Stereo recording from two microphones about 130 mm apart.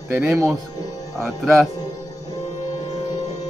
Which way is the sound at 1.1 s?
Centre (ahead or behind).